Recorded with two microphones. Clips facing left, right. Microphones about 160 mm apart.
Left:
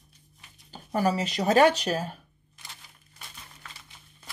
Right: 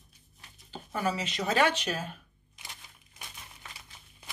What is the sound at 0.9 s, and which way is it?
Speech, 40° left (ahead or behind).